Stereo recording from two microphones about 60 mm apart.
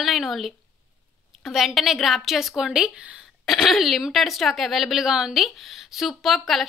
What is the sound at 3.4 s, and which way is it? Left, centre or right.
A woman's voice, centre.